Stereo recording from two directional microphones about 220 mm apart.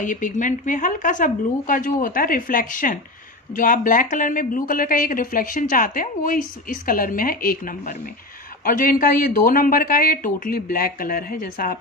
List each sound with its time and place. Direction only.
0.0 s speech: 35° left (ahead or behind)